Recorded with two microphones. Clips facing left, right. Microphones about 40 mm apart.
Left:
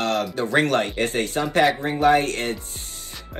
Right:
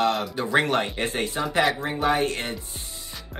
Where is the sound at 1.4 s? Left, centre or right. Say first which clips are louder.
Left 4 dB; centre.